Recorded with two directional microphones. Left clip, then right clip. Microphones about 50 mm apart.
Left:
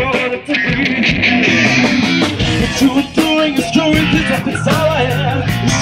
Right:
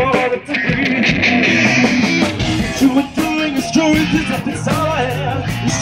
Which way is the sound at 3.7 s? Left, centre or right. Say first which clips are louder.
Right 2 dB; centre.